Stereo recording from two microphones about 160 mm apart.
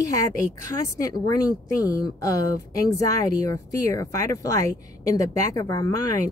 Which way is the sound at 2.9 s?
20° left (ahead or behind).